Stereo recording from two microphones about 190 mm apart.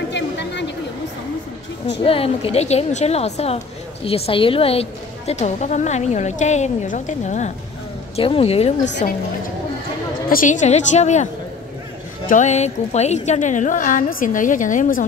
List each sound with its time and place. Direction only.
0.1 s a sound: 65° left (ahead or behind)
2.0 s a woman's voice: 30° left (ahead or behind)
10.3 s a woman's voice: 40° left (ahead or behind)
12.3 s a woman's voice: 40° left (ahead or behind)